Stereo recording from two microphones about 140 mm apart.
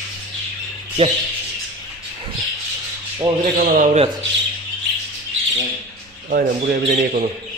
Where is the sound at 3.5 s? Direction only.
80° right.